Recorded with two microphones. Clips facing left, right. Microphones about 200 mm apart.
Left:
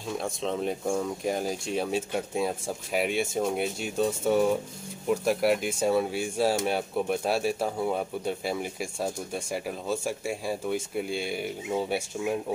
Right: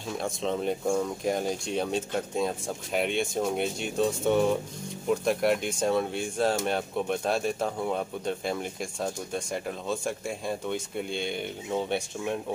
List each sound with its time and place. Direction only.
0.1 s speech: centre (ahead or behind)